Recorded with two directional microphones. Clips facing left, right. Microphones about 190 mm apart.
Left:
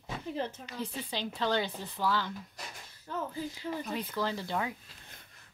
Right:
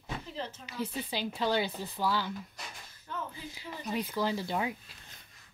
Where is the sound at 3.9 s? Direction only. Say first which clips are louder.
Right 6 dB; 10° right (ahead or behind).